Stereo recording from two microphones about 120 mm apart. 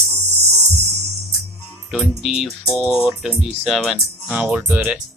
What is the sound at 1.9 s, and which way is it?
Speech, centre (ahead or behind).